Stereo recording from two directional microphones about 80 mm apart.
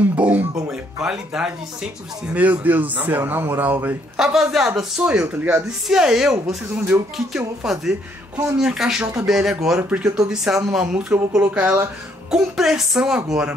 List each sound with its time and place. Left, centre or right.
0.0 s music: centre
0.7 s speech: centre; by 3.9 s right
4.2 s speech: centre
5.9 s speech: centre
7.6 s speech: centre
9.8 s speech: right
10.1 s speech: centre
12.3 s speech: centre